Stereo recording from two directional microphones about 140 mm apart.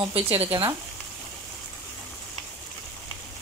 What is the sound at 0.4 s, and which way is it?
Speech, 40° right (ahead or behind).